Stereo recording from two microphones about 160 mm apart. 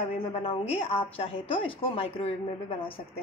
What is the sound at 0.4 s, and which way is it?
A woman's voice, 35° left (ahead or behind).